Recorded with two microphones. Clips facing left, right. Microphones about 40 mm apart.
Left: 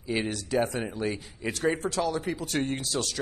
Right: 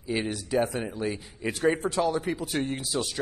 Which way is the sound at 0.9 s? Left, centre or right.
Left.